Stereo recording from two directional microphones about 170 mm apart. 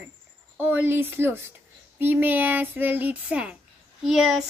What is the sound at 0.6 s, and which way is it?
A woman's voice, 10° right (ahead or behind).